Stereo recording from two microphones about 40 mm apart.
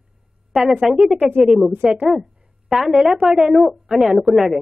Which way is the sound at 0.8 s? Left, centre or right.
Centre.